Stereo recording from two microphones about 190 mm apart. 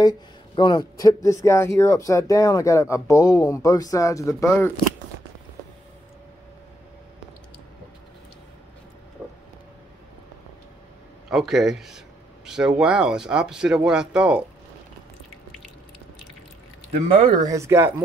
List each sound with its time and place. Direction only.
0.6 s speech: 25° left (ahead or behind)
9.2 s vehicle: 10° left (ahead or behind)
11.2 s speech: centre (ahead or behind)
17.5 s speech: 15° right (ahead or behind)